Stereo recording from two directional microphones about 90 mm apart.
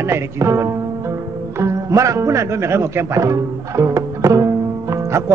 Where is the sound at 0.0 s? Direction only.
30° right (ahead or behind).